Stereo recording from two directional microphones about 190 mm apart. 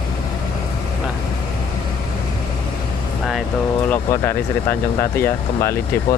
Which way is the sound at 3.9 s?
10° left (ahead or behind).